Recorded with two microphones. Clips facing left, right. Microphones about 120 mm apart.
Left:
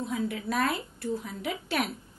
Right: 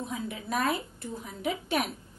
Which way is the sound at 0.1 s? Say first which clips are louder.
Left 3 dB; 20° right (ahead or behind).